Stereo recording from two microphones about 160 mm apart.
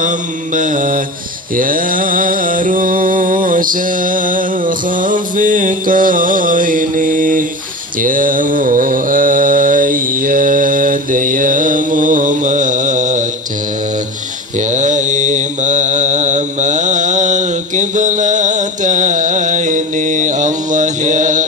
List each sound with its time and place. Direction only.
0.6 s mantra: 55° right (ahead or behind)
14.7 s mantra: 50° right (ahead or behind)